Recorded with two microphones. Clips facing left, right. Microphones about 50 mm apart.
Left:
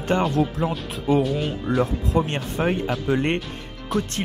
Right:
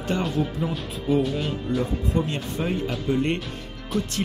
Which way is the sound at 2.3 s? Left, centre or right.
Left.